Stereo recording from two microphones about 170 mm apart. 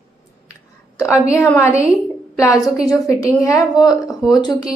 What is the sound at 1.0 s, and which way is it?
Speech, 15° left (ahead or behind).